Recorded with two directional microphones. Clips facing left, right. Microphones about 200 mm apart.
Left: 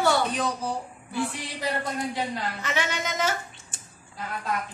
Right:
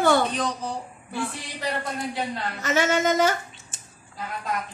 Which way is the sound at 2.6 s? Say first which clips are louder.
Right 11 dB; 45° right (ahead or behind).